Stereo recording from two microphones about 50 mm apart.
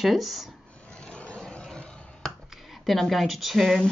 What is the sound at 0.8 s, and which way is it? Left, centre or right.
Vehicle, centre.